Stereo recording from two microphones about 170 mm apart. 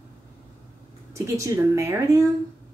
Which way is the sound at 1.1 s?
20° right (ahead or behind).